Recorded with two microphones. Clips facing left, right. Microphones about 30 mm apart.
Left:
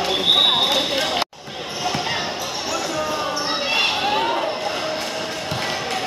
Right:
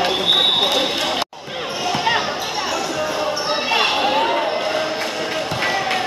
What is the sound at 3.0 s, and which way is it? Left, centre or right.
Basketball bounce, centre.